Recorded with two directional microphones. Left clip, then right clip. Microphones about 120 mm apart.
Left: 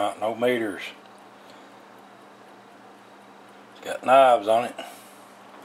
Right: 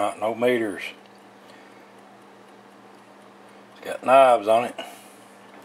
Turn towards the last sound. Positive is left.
turn(degrees=-10)  # may be behind; listen again after turning